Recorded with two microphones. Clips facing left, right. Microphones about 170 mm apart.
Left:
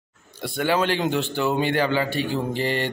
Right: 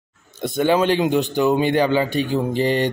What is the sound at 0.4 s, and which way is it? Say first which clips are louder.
Speech: right 5 dB; 20° right (ahead or behind).